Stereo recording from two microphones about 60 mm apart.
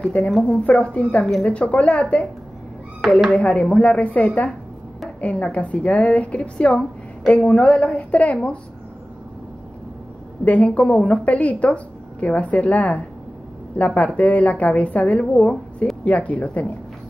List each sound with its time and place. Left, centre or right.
0.2 s speech: centre
0.7 s a woman's voice: left
3.0 s speech: centre
3.3 s a woman's voice: centre
10.4 s a woman's voice: left